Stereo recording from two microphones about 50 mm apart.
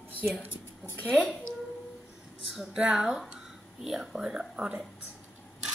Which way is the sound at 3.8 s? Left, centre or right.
Centre.